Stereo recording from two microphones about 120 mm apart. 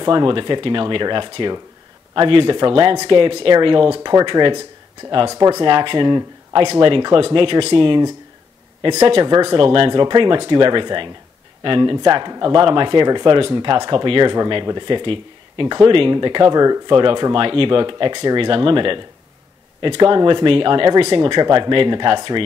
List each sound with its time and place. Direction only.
0.0 s speech: 40° right (ahead or behind)
5.3 s speech: 30° right (ahead or behind)